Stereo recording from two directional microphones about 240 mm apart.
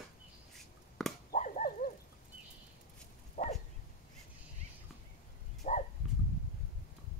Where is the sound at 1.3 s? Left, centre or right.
Left.